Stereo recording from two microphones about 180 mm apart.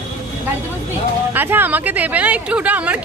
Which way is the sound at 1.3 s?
10° right (ahead or behind).